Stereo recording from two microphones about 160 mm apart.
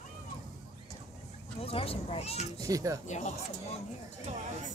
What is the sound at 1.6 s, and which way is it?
Speech, 35° left (ahead or behind).